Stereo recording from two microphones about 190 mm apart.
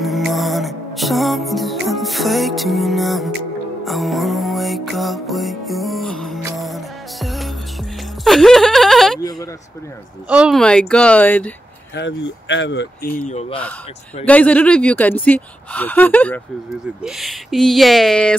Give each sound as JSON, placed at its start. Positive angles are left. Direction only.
{"t": 0.0, "sound": "music", "side_deg": 0}
{"t": 8.2, "sound": "a sound", "side_deg": 0}
{"t": 10.2, "sound": "speech", "side_deg": -5}
{"t": 11.9, "sound": "speech", "side_deg": 70}
{"t": 13.3, "sound": "a man's voice", "side_deg": 35}
{"t": 14.2, "sound": "speech", "side_deg": 5}